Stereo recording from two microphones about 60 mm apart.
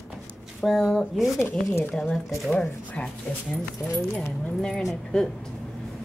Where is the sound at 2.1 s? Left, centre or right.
Centre.